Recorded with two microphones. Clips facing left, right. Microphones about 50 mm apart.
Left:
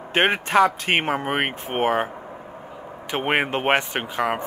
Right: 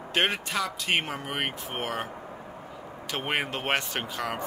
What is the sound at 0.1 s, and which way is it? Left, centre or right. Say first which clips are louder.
Speech: left 8 dB; left.